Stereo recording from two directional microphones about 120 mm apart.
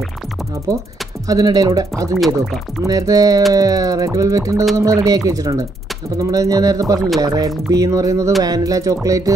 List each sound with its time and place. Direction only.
1.2 s speech: 30° right (ahead or behind)